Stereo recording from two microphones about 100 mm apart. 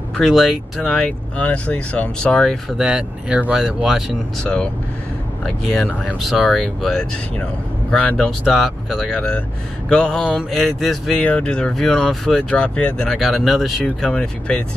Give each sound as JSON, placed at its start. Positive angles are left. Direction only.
{"t": 0.2, "sound": "speech", "side_deg": -5}
{"t": 1.4, "sound": "speech", "side_deg": 15}
{"t": 2.8, "sound": "speech", "side_deg": -10}
{"t": 9.8, "sound": "speech", "side_deg": 10}
{"t": 11.1, "sound": "speech", "side_deg": 10}
{"t": 13.8, "sound": "speech", "side_deg": 10}